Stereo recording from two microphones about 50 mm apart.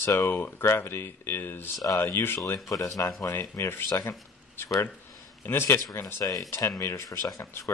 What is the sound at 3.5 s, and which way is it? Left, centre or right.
Speech, left.